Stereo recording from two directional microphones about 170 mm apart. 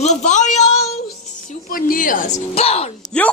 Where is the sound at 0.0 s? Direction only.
45° left (ahead or behind).